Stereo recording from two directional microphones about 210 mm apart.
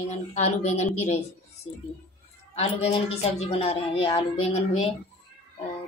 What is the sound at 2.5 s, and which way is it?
Speech, 30° left (ahead or behind).